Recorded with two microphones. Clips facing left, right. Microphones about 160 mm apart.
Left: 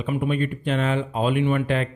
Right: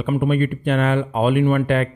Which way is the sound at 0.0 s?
55° right (ahead or behind).